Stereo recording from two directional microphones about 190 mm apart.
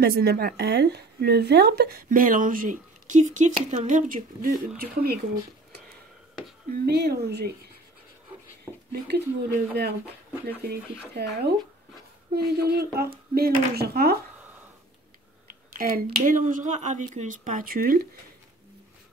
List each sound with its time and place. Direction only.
0.0 s a woman's voice: 55° right (ahead or behind)
6.9 s speech: 55° right (ahead or behind)
8.9 s speech: 55° right (ahead or behind)
15.8 s a woman's voice: 50° right (ahead or behind)